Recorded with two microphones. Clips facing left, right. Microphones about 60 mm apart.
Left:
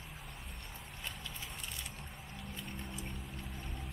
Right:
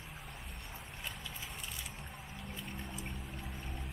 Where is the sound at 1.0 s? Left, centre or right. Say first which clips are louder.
Even; centre.